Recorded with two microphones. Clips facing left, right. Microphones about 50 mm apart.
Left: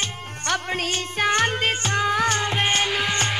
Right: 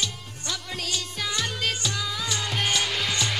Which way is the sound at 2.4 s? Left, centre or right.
Left.